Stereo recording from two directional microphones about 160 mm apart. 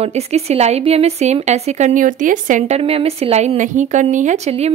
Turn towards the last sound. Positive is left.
turn(degrees=-40)  # may be behind; listen again after turning